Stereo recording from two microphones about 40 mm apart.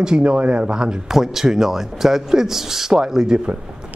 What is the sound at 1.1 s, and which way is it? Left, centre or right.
Speech, centre.